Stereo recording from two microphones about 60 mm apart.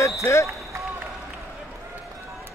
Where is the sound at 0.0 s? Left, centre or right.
Left.